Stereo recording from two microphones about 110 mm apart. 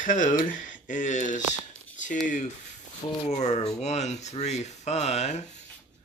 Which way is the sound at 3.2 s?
90° left.